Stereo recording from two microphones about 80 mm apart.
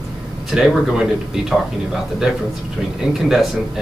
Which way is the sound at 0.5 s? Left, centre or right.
Centre.